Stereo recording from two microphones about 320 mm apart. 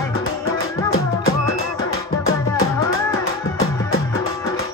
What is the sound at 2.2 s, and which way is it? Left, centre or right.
Music, left.